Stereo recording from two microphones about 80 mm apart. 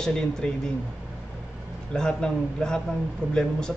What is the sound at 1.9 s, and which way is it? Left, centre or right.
Speech, centre.